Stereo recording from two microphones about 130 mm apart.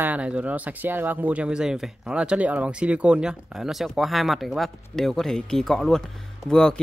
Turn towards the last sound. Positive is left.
turn(degrees=5)  # may be behind; listen again after turning